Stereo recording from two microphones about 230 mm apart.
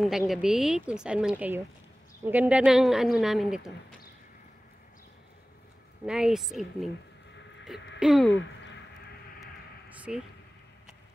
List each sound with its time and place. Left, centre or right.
0.3 s speech: centre
6.0 s speech: centre
8.0 s speech: centre
9.4 s a sound: centre